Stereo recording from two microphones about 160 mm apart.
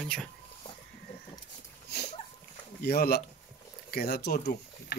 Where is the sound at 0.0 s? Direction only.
5° left (ahead or behind).